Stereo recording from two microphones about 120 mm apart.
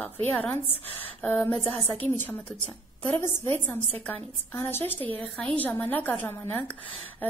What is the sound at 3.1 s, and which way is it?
Speech, 20° left (ahead or behind).